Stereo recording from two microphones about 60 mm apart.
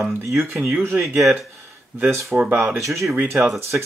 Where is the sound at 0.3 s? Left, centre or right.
Right.